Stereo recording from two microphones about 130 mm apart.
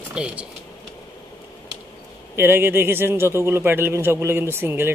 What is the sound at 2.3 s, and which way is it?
A man's voice, 20° right (ahead or behind).